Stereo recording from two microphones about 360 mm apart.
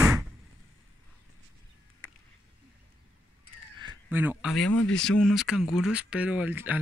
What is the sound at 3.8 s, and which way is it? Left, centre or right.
Speech, centre.